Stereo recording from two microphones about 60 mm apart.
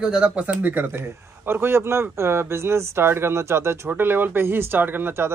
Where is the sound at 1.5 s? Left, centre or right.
Right.